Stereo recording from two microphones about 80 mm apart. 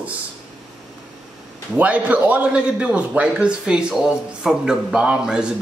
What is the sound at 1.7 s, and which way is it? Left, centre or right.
A man's voice, centre.